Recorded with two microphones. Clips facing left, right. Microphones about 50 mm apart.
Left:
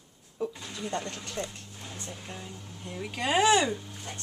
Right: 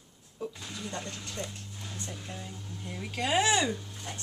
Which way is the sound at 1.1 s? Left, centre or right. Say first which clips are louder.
Left 2 dB; left.